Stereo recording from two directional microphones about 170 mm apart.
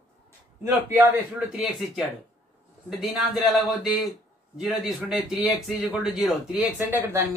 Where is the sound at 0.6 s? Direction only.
10° right (ahead or behind).